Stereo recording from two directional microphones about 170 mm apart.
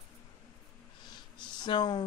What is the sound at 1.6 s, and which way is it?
Speech, 25° left (ahead or behind).